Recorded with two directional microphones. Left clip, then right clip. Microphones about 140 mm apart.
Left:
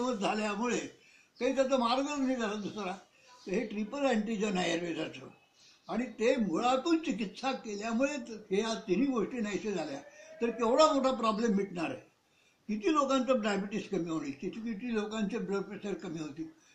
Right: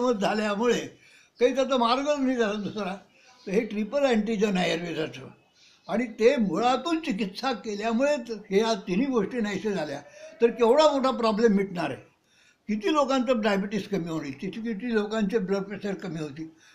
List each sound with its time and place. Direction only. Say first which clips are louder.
0.0 s a man's voice: right 7 dB; 30° right (ahead or behind)